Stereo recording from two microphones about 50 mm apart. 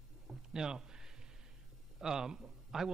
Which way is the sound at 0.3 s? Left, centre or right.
Centre.